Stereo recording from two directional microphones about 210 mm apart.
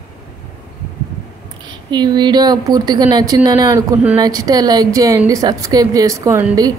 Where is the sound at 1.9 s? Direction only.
20° right (ahead or behind).